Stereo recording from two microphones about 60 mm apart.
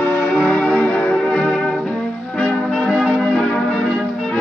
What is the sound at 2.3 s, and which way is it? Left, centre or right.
Music, left.